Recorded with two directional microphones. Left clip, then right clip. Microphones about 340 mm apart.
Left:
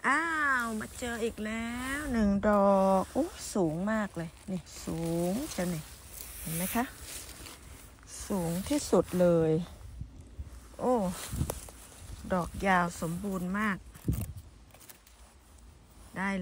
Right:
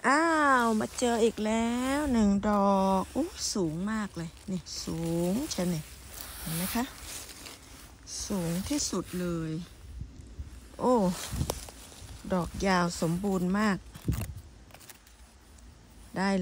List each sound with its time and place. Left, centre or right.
0.0 s speech: centre
6.3 s a sound: right
6.6 s a sound: centre
8.1 s speech: centre
8.9 s speech: centre
10.8 s speech: centre